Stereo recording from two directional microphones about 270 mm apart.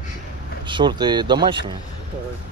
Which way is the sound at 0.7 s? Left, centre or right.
Centre.